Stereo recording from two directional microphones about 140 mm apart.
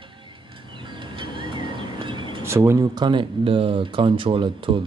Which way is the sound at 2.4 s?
20° right (ahead or behind).